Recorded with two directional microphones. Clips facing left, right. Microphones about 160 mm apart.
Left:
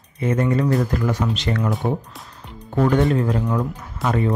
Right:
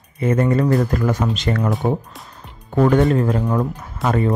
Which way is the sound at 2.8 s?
50° right (ahead or behind).